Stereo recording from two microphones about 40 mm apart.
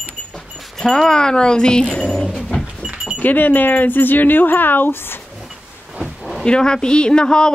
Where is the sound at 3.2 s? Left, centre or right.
Left.